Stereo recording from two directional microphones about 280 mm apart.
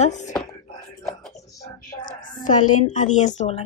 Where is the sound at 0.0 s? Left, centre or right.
Left.